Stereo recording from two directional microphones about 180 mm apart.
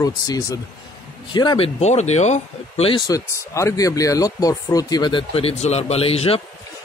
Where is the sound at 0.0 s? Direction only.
20° left (ahead or behind).